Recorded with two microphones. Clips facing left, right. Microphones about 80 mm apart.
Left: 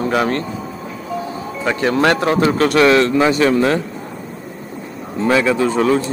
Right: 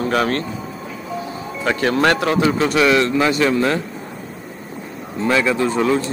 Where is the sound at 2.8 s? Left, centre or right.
Left.